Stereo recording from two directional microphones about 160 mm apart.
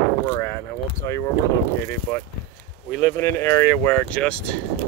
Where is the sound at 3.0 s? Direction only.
15° left (ahead or behind).